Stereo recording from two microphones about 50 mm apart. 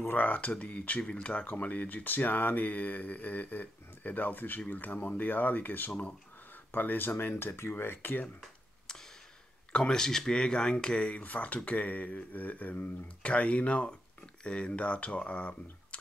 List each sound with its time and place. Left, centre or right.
0.2 s speech: left
1.5 s speech: left
7.7 s speech: left
9.7 s speech: centre